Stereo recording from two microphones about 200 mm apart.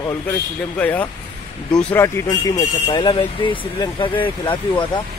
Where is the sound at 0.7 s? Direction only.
10° left (ahead or behind).